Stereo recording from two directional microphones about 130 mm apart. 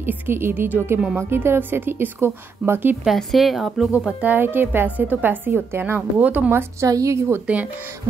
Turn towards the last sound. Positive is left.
turn(degrees=-15)  # may be behind; listen again after turning